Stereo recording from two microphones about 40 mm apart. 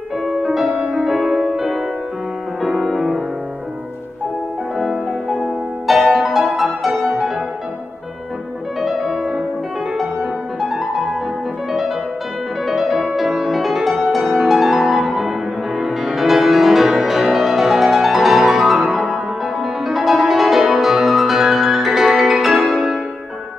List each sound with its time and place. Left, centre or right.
1.0 s music: centre
2.6 s music: centre
5.9 s music: centre
9.0 s music: centre
10.6 s music: centre
12.6 s music: centre